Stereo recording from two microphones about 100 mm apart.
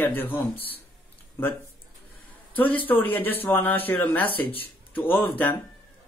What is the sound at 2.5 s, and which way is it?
Speech, 15° left (ahead or behind).